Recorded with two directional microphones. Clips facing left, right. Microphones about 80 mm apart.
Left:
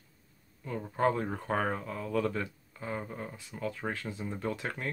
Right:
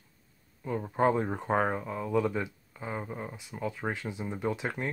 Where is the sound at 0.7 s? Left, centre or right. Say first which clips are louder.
Right 3 dB; centre.